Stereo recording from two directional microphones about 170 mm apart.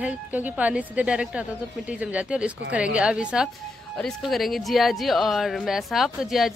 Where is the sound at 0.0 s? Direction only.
10° right (ahead or behind).